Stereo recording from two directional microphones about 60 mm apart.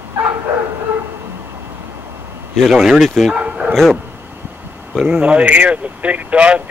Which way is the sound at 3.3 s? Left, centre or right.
Centre.